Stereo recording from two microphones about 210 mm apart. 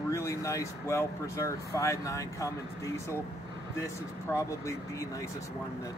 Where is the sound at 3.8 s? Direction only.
15° left (ahead or behind).